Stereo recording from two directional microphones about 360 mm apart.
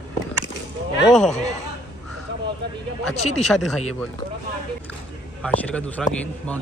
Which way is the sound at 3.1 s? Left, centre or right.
Centre.